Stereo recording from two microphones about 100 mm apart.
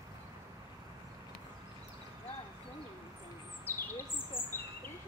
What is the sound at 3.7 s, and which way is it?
Bird, 20° left (ahead or behind).